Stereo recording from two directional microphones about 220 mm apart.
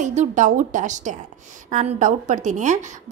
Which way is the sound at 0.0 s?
35° right (ahead or behind).